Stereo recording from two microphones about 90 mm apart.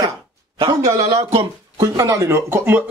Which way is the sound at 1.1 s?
90° right.